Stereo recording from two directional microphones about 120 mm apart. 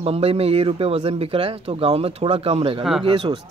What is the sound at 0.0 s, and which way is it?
Speech, 55° right (ahead or behind).